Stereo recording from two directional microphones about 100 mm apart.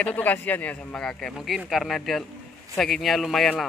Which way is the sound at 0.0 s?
15° left (ahead or behind).